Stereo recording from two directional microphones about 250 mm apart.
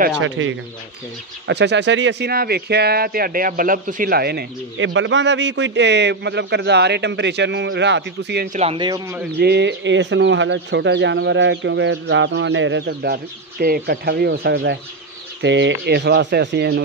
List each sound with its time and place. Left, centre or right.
0.2 s speech: right
8.5 s speech: right
9.4 s speech: right